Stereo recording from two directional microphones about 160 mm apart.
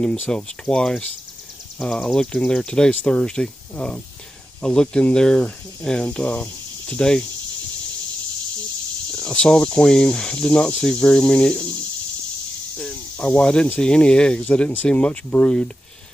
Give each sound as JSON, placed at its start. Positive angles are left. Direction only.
{"t": 0.0, "sound": "speech", "side_deg": 5}
{"t": 9.1, "sound": "speech", "side_deg": 5}
{"t": 12.7, "sound": "speech", "side_deg": 5}